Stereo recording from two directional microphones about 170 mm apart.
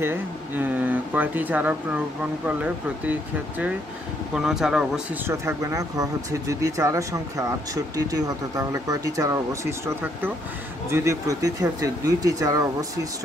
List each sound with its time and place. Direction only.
0.0 s speech: 10° right (ahead or behind)
5.3 s speech: 15° right (ahead or behind)